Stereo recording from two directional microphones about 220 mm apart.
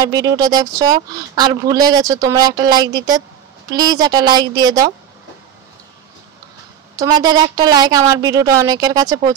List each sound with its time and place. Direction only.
0.0 s speech: 15° right (ahead or behind)
7.0 s speech: 20° right (ahead or behind)